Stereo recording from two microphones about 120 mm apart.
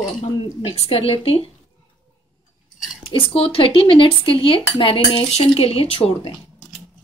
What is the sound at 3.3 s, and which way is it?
Speech, 50° left (ahead or behind).